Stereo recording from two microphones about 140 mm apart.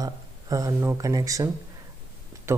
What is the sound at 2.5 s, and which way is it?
Speech, 20° right (ahead or behind).